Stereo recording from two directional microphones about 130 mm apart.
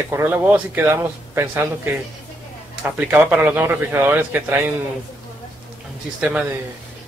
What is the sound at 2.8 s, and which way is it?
Speech, 10° right (ahead or behind).